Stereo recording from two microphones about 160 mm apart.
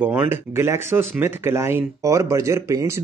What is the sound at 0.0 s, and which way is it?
Speech, 10° right (ahead or behind).